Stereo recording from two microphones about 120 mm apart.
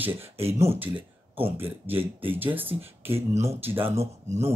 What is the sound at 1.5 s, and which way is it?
Speech, 20° right (ahead or behind).